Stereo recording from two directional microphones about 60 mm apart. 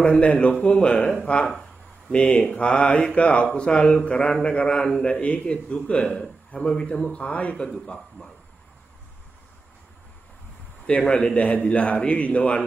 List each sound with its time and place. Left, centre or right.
0.0 s a man's voice: centre
1.2 s mantra: centre
10.9 s a man's voice: centre